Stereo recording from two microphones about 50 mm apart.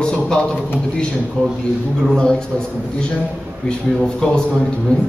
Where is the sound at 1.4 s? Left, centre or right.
Left.